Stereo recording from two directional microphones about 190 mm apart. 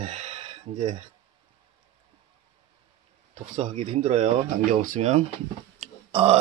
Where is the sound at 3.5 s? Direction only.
35° right (ahead or behind).